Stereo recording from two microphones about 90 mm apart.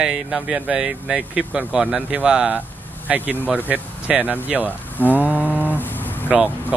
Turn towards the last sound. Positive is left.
turn(degrees=-10)  # may be behind; listen again after turning